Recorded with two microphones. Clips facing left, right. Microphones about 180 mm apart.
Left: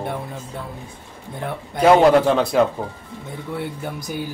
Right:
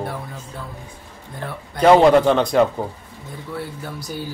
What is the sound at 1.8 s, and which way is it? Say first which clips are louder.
Speech: right 1 dB; 5° left (ahead or behind).